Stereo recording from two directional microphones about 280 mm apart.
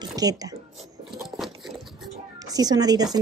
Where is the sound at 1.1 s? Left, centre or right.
Centre.